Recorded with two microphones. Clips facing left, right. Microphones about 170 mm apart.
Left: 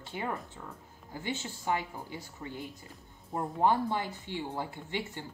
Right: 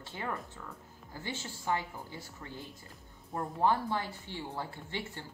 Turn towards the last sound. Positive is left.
turn(degrees=15)  # may be behind; listen again after turning